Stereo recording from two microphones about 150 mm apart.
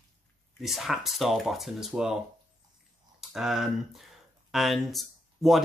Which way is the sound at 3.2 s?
5° right (ahead or behind).